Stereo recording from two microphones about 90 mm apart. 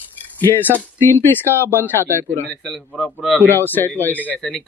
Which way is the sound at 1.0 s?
25° left (ahead or behind).